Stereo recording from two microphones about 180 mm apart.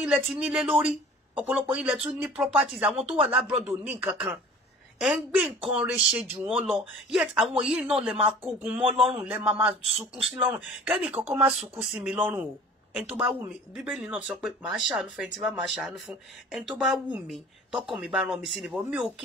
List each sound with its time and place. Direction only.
0.0 s speech: 5° right (ahead or behind)
5.7 s speech: 5° right (ahead or behind)
8.8 s speech: 30° right (ahead or behind)
9.1 s speech: 5° right (ahead or behind)